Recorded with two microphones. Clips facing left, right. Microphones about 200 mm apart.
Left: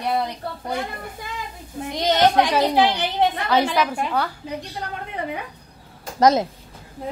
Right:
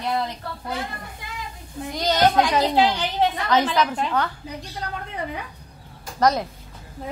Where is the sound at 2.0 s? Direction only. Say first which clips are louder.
Left 1 dB; 25° left (ahead or behind).